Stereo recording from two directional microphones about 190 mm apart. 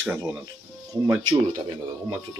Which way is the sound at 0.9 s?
15° right (ahead or behind).